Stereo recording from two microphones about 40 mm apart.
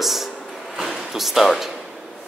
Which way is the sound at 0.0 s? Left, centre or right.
Centre.